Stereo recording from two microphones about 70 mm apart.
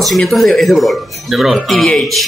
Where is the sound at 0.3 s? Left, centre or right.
Centre.